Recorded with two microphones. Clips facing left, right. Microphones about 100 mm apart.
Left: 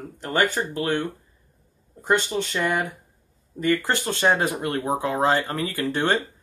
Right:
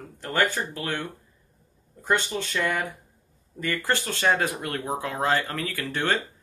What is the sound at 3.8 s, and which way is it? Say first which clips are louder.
Speech: left 2 dB; 20° left (ahead or behind).